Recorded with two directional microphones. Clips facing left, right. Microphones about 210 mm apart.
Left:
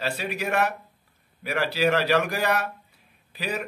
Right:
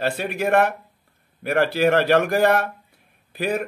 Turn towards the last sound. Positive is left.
turn(degrees=-50)  # may be behind; listen again after turning